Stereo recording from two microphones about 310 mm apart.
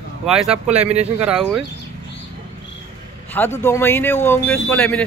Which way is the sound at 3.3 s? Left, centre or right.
Centre.